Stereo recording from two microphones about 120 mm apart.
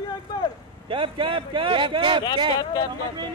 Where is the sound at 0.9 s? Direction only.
45° right (ahead or behind).